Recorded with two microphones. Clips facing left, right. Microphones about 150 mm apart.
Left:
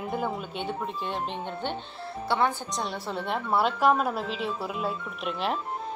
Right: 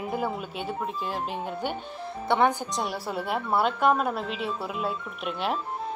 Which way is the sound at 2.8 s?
Centre (ahead or behind).